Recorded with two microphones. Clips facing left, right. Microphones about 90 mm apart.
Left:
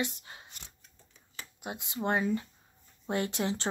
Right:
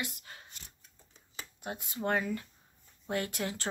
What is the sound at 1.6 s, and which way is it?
Speech, 20° left (ahead or behind).